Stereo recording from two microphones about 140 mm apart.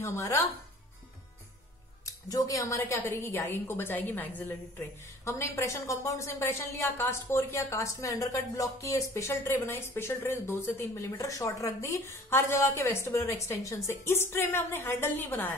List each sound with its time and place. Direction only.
0.0 s a woman's voice: 20° left (ahead or behind)
2.0 s a woman's voice: 25° left (ahead or behind)